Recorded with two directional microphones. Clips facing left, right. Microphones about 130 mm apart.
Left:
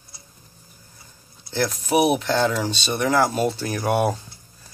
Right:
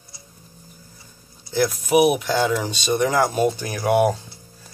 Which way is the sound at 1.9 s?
35° left (ahead or behind).